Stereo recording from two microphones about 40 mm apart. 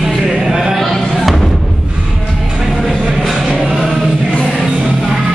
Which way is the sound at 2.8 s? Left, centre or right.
Centre.